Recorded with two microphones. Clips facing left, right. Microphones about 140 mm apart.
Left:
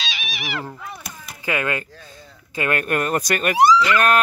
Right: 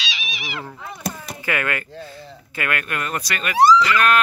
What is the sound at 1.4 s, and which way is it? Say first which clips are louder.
Speech: left 1 dB; 20° left (ahead or behind).